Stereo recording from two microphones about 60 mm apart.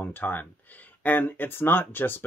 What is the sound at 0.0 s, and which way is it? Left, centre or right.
Speech, left.